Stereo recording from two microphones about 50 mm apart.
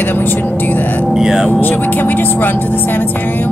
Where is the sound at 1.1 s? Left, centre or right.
Centre.